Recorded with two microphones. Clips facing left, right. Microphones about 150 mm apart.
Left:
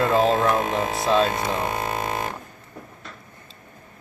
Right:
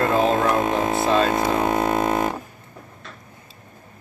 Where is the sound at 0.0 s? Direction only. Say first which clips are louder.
Even; centre (ahead or behind).